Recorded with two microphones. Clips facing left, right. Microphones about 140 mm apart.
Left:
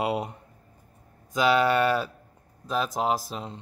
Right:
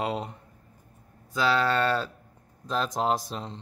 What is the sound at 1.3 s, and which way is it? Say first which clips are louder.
Speech: left 3 dB; 15° left (ahead or behind).